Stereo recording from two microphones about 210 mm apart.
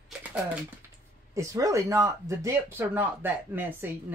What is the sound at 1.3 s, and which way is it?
Speech, 15° right (ahead or behind).